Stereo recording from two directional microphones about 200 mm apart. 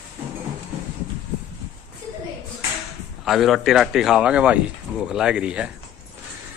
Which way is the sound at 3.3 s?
Centre (ahead or behind).